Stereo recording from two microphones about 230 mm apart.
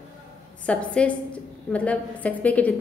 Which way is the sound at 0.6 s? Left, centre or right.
Centre.